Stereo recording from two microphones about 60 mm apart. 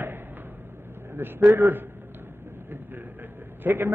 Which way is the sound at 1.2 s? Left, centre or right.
Right.